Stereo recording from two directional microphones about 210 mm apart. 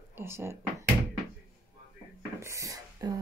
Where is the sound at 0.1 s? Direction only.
10° right (ahead or behind).